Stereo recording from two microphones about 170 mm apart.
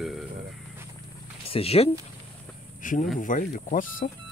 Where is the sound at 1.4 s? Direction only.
35° left (ahead or behind).